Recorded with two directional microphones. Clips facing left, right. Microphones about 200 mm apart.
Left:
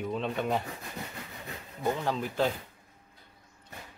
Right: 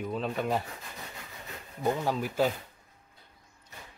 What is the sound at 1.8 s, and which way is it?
Speech, 10° right (ahead or behind).